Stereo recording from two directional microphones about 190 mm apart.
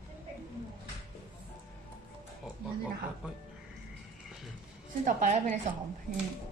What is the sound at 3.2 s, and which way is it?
Speech, 5° right (ahead or behind).